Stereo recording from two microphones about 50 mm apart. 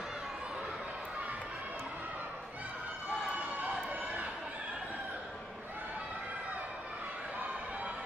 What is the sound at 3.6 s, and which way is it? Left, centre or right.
Run, right.